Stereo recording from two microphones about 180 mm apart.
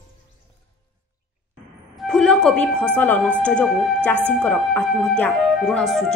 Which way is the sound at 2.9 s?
10° left (ahead or behind).